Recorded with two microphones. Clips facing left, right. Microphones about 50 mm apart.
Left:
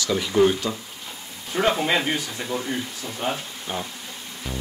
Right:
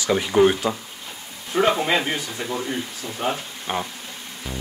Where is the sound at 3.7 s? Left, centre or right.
Right.